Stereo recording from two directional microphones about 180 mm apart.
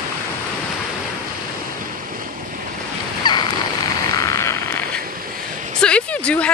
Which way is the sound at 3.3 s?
25° left (ahead or behind).